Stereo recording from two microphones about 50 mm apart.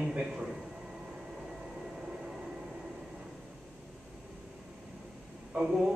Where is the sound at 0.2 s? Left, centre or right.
Centre.